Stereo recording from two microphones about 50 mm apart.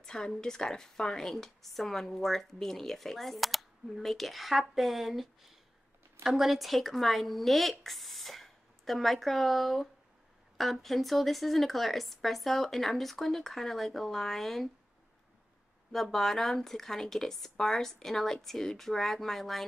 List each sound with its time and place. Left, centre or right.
0.0 s a sound: centre
0.4 s speech: centre
15.9 s speech: centre